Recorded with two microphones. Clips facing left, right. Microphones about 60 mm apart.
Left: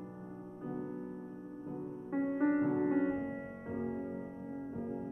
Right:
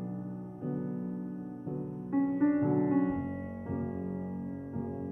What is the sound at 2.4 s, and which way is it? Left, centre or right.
Music, centre.